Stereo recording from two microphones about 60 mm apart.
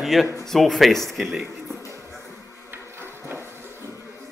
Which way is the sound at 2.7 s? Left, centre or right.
Right.